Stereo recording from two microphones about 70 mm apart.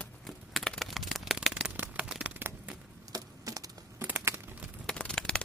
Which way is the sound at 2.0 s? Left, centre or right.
Centre.